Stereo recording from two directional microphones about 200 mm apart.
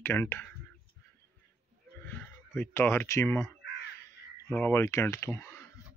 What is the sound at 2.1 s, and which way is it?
Speech, 10° left (ahead or behind).